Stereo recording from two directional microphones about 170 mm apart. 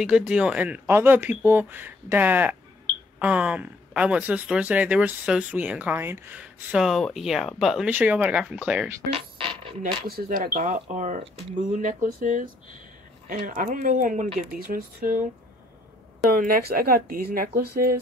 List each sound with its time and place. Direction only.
0.0 s speech: 5° right (ahead or behind)
9.1 s music: 30° right (ahead or behind)
10.0 s speech: 60° right (ahead or behind)
16.3 s speech: 55° right (ahead or behind)